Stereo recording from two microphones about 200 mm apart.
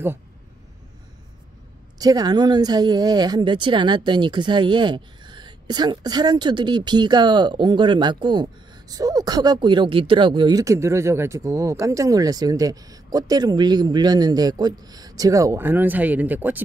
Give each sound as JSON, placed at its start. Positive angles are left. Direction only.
{"t": 2.0, "sound": "speech", "side_deg": -20}